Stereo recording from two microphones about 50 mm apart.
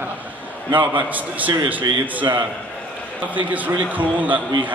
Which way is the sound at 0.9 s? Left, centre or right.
Right.